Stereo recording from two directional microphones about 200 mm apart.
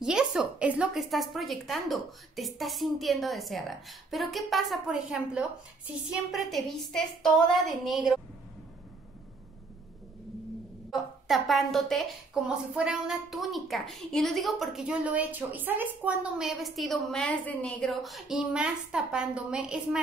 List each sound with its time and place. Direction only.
0.0 s a woman's voice: 5° right (ahead or behind)
10.9 s a woman's voice: centre (ahead or behind)